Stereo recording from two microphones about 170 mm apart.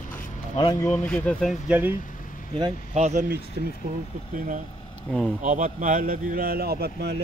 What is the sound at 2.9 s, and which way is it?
Speech, 40° right (ahead or behind).